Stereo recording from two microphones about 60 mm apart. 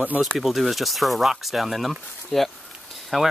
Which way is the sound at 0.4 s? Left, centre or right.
Centre.